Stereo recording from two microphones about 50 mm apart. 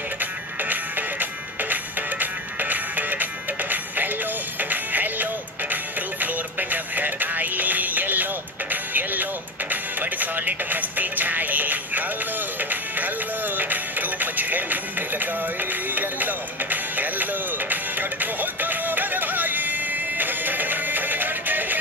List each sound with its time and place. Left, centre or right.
0.2 s music: right